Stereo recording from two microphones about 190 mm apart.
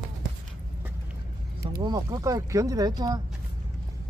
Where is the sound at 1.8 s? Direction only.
20° right (ahead or behind).